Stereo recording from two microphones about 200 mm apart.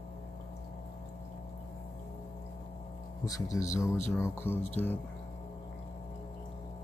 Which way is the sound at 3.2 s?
15° left (ahead or behind).